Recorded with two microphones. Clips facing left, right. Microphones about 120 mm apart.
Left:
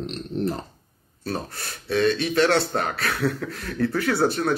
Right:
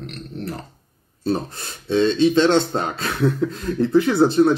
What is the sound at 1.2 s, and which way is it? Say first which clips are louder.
Speech: right 7 dB; 20° right (ahead or behind).